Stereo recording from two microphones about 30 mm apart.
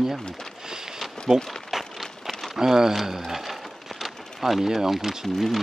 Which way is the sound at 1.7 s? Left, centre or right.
Centre.